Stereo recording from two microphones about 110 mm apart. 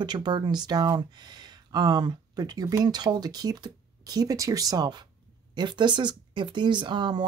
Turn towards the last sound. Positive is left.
turn(degrees=-45)  # may be behind; listen again after turning